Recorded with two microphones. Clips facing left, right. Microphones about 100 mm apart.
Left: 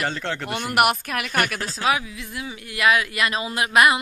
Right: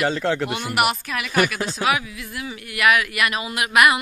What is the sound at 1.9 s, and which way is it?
Speech, 25° left (ahead or behind).